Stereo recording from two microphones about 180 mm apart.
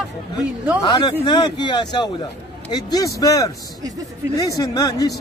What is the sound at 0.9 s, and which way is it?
Speech, 25° left (ahead or behind).